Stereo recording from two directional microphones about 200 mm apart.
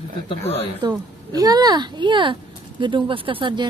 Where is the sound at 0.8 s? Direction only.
20° right (ahead or behind).